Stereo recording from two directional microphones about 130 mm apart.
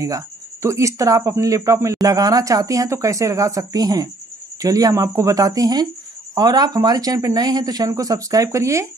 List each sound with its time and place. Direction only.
0.0 s speech: 25° right (ahead or behind)